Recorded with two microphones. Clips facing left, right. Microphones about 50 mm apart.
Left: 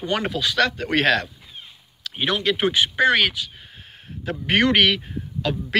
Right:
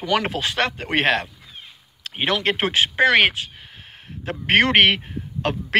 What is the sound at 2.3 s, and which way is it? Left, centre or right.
Speech, right.